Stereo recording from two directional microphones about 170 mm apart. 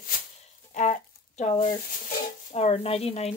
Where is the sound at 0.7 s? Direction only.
45° left (ahead or behind).